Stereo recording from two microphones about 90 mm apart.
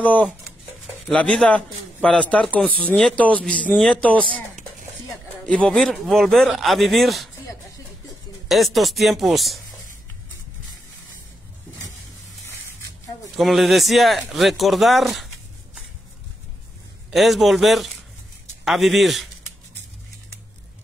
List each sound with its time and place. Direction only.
0.0 s a man's voice: 15° left (ahead or behind)
5.5 s speech: 15° left (ahead or behind)
8.5 s speech: centre (ahead or behind)
13.4 s speech: centre (ahead or behind)
17.1 s speech: centre (ahead or behind)